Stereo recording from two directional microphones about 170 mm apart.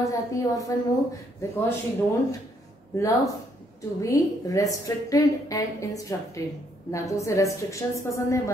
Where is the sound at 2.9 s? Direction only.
20° left (ahead or behind).